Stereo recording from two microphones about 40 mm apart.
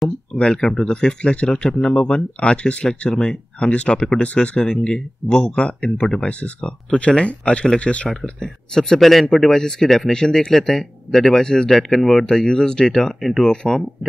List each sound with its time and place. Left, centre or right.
0.3 s speech: left
4.6 s speech: centre
5.9 s speech: centre
6.2 s speech: left
8.4 s speech: centre
9.0 s speech: centre
11.9 s speech: centre
12.3 s speech: centre
13.2 s speech: centre
13.5 s speech: centre